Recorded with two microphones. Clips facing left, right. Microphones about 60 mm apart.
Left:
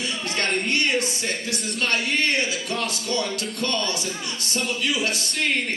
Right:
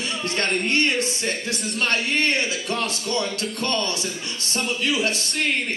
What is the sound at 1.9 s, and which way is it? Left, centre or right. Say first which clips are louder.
Speech: right 1 dB; right.